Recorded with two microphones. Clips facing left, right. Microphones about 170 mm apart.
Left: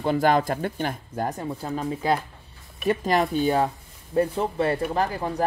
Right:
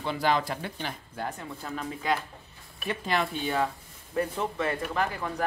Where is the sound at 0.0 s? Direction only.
45° left (ahead or behind).